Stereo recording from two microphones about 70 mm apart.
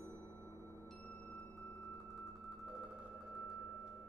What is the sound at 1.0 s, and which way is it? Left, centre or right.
Music, left.